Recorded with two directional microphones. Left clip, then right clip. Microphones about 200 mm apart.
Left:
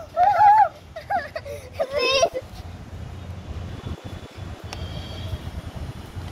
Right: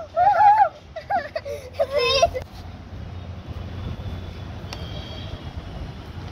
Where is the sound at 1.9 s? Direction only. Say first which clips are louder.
Right 1 dB; centre (ahead or behind).